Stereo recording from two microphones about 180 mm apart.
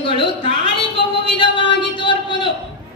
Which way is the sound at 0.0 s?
30° left (ahead or behind).